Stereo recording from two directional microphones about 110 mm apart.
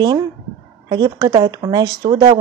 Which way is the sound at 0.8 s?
40° right (ahead or behind).